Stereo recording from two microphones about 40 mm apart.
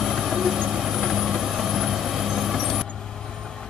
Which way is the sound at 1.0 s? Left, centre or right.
Centre.